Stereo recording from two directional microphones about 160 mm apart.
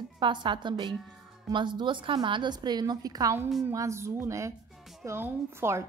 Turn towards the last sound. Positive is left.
turn(degrees=-15)  # may be behind; listen again after turning